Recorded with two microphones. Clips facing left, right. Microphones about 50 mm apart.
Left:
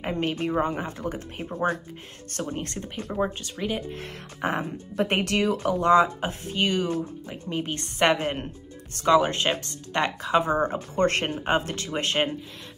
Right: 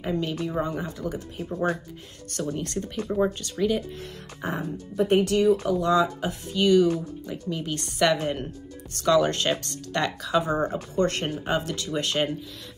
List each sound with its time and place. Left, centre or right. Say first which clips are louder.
0.0 s speech: left 1 dB; left
1.5 s speech: even; left
4.4 s speech: left 3 dB; left
5.8 s speech: left 3 dB; left
11.0 s speech: left 1 dB; left